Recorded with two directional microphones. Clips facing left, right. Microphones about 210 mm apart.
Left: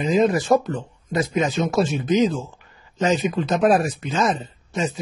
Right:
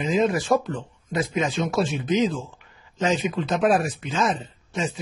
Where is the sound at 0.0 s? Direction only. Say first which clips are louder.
Left 3 dB; 40° left (ahead or behind).